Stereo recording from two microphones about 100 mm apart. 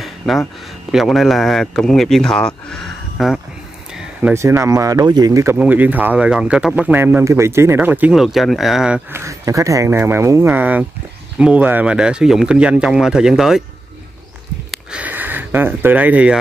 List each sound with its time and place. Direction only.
0.3 s speech: centre (ahead or behind)
3.9 s a sound: 5° right (ahead or behind)
4.3 s speech: 25° right (ahead or behind)
5.6 s speech: 15° right (ahead or behind)
6.9 s speech: 20° right (ahead or behind)
8.1 s speech: centre (ahead or behind)
9.1 s speech: 30° right (ahead or behind); by 13.6 s 5° right (ahead or behind)
14.7 s speech: 10° right (ahead or behind)